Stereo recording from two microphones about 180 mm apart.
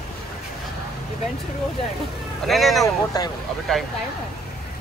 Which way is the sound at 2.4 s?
Centre (ahead or behind).